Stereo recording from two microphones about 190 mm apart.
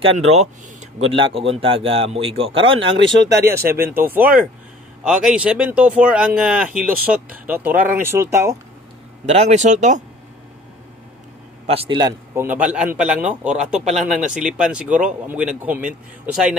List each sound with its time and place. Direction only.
0.0 s speech: 35° right (ahead or behind)
3.4 s a man's voice: 15° right (ahead or behind)
9.2 s speech: 35° right (ahead or behind)
11.6 s speech: 30° right (ahead or behind)
12.4 s a man's voice: 10° right (ahead or behind)